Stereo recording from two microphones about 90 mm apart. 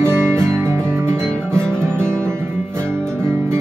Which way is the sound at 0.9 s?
30° right (ahead or behind).